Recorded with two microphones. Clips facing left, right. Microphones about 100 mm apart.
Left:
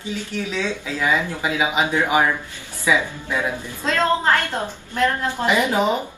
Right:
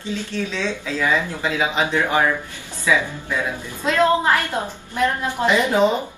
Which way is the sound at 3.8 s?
10° right (ahead or behind).